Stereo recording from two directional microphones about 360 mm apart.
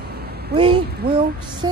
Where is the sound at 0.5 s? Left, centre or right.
Centre.